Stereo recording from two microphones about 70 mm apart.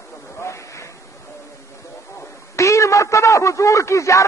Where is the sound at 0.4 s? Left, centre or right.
Left.